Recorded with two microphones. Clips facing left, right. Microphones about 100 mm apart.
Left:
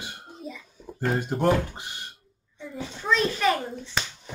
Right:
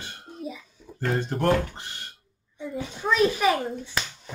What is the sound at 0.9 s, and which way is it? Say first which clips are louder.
Speech: even; 10° left (ahead or behind).